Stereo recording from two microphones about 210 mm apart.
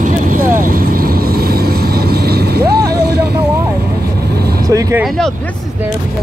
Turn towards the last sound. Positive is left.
turn(degrees=-15)  # may be behind; listen again after turning